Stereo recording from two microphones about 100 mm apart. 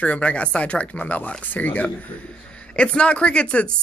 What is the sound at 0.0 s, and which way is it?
Speech, 15° left (ahead or behind).